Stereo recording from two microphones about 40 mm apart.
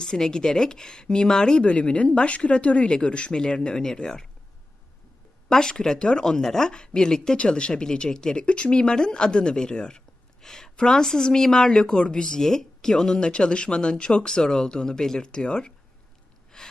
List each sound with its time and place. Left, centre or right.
0.0 s speech: centre
1.6 s speech: left
5.5 s speech: centre
7.3 s speech: left
16.5 s gasp: centre